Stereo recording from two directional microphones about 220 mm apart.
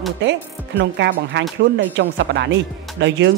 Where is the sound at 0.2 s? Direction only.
50° right (ahead or behind).